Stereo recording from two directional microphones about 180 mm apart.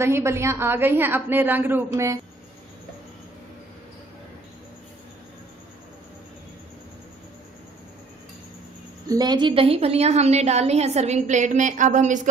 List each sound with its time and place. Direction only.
0.0 s a woman's voice: 15° right (ahead or behind)
9.1 s a woman's voice: 25° right (ahead or behind); by 12.3 s 45° right (ahead or behind)